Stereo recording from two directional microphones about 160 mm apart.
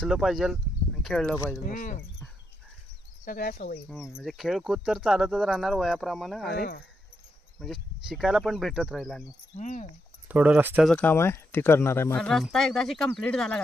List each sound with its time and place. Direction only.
0.0 s speech: centre (ahead or behind)
1.7 s speech: 60° left (ahead or behind)
3.3 s speech: 65° left (ahead or behind)
3.5 s speech: 50° left (ahead or behind)
3.9 s speech: centre (ahead or behind)
7.5 s speech: centre (ahead or behind)
9.6 s speech: 50° left (ahead or behind)
10.2 s speech: 10° right (ahead or behind)
10.9 s speech: 10° left (ahead or behind)
12.2 s speech: centre (ahead or behind)